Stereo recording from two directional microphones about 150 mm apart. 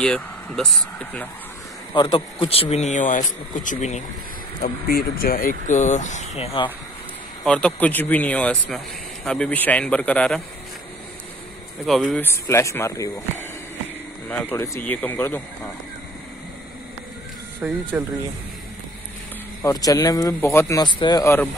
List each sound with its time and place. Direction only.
0.0 s a man's voice: 5° left (ahead or behind)
2.0 s speech: 35° left (ahead or behind); by 4.0 s 55° left (ahead or behind)
4.8 s speech: 80° left; by 6.7 s 40° left (ahead or behind)
7.4 s a man's voice: 5° left (ahead or behind)
11.8 s speech: centre (ahead or behind)
12.2 s a man's voice: 15° left (ahead or behind)
17.6 s speech: 10° right (ahead or behind)
19.6 s speech: 25° left (ahead or behind)
21.2 s a man's voice: 15° left (ahead or behind)